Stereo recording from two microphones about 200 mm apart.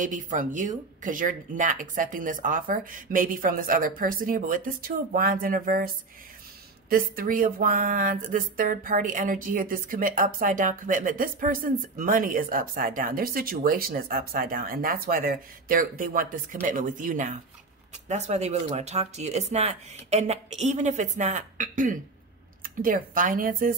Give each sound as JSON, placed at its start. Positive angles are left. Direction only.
{"t": 0.0, "sound": "speech", "side_deg": -40}
{"t": 6.9, "sound": "speech", "side_deg": -45}